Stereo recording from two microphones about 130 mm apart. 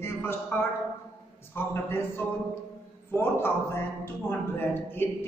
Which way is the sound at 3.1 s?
20° left (ahead or behind).